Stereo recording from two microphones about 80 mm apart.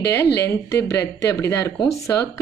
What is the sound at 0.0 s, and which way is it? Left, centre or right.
A woman's voice, left.